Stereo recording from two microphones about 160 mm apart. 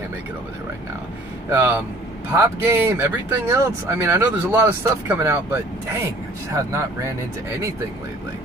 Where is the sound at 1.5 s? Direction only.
15° right (ahead or behind).